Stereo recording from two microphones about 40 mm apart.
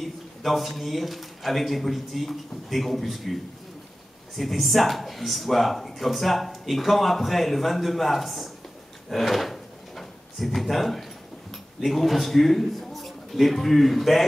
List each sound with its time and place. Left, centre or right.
0.0 s speech: centre
4.4 s speech: centre
9.1 s drawer open or close: centre
11.8 s a man's voice: centre